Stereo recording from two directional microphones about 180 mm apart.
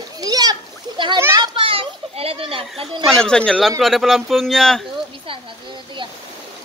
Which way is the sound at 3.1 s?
5° left (ahead or behind).